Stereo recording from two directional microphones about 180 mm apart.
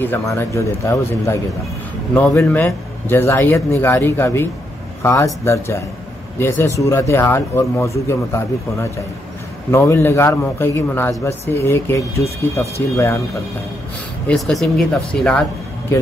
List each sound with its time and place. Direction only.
0.0 s a man's voice: 15° left (ahead or behind)
9.7 s a man's voice: 15° left (ahead or behind)
14.2 s speech: centre (ahead or behind)